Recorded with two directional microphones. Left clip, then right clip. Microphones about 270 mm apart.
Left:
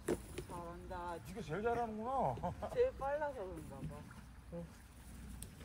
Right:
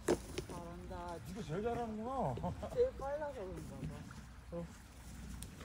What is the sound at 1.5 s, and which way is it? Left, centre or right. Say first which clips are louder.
Speech: left 2 dB; centre.